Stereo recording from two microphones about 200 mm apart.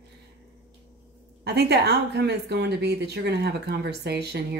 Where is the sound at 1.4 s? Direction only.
55° right (ahead or behind).